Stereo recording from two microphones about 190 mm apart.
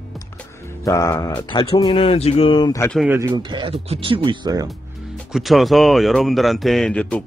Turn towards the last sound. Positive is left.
turn(degrees=5)  # may be behind; listen again after turning